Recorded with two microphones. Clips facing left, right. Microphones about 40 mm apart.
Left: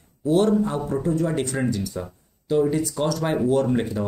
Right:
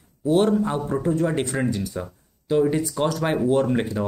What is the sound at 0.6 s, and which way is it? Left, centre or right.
Speech, right.